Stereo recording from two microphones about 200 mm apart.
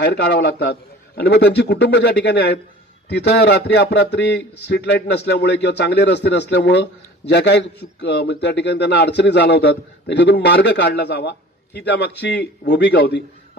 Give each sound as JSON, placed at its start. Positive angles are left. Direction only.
{"t": 0.0, "sound": "a man's voice", "side_deg": 55}